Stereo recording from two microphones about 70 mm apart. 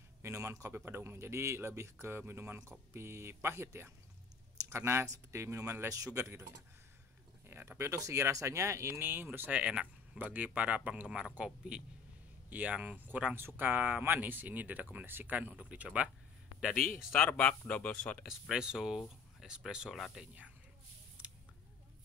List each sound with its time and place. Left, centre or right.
0.2 s a sound: right
0.7 s speech: right
9.0 s speech: right
9.5 s speech: centre
17.2 s speech: centre
18.2 s speech: centre
21.2 s scissors: centre